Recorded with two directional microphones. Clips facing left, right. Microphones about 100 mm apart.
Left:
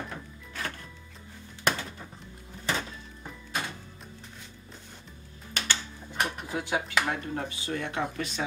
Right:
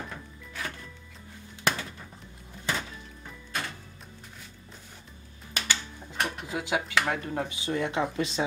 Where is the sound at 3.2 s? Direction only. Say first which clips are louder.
Left 1 dB; 15° left (ahead or behind).